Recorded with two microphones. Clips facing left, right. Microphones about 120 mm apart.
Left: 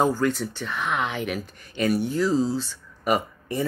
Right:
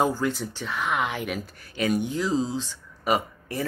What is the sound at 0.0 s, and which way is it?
Speech, 10° right (ahead or behind).